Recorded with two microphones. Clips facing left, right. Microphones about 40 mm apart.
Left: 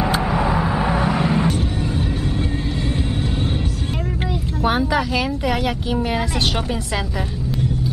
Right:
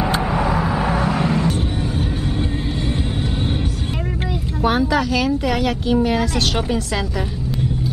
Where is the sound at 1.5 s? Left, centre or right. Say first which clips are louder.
Even; centre.